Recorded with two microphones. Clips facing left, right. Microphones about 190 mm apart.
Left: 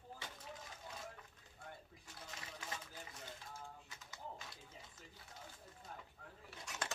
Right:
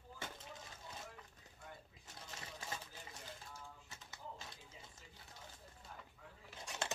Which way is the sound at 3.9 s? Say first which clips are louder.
Left 1 dB; 25° right (ahead or behind).